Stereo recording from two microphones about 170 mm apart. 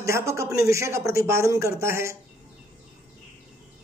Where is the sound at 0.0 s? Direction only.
15° right (ahead or behind).